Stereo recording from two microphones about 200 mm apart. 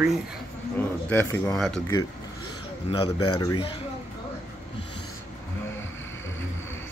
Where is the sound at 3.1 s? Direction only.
90° left.